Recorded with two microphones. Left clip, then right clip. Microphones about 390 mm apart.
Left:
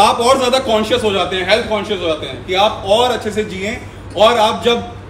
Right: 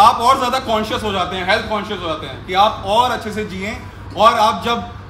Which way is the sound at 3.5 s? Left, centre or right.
Centre.